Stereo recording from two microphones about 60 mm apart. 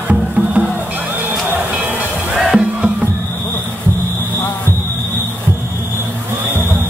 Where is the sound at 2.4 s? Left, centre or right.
Centre.